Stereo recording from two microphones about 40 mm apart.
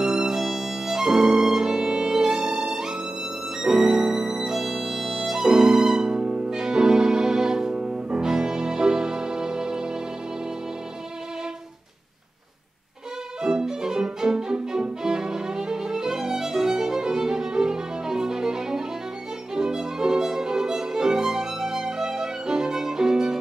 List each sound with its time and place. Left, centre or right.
0.0 s violin: centre
2.5 s music: centre
6.1 s music: right
6.6 s music: centre
13.4 s violin: centre